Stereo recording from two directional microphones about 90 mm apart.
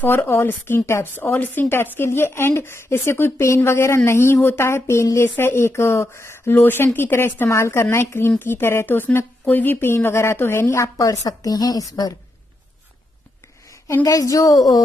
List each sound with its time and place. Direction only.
0.0 s speech: 25° left (ahead or behind)
11.0 s a woman's voice: 45° left (ahead or behind)
14.0 s a woman's voice: 40° left (ahead or behind)